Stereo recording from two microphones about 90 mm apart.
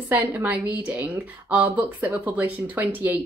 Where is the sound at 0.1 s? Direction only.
20° right (ahead or behind).